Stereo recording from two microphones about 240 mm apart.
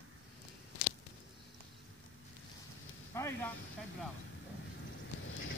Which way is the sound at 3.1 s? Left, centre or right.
Centre.